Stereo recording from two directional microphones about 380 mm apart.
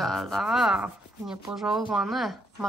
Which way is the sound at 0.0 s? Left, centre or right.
Centre.